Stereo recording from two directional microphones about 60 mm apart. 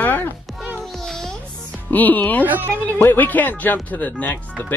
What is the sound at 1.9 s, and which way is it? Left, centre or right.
Speech, left.